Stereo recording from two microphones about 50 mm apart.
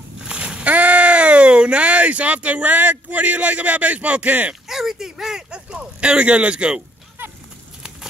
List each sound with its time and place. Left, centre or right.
0.2 s a sound: centre
0.7 s speech: right
4.6 s speech: centre